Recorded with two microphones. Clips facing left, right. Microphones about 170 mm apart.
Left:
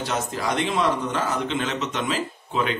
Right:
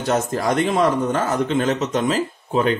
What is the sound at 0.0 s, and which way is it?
Speech, 50° right (ahead or behind).